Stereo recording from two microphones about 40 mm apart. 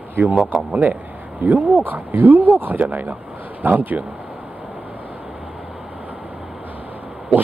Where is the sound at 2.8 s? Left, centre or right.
Right.